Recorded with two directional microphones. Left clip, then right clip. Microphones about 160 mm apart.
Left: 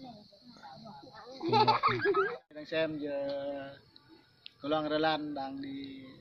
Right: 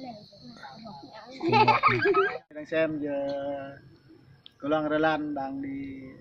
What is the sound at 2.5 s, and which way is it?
Speech, 5° right (ahead or behind).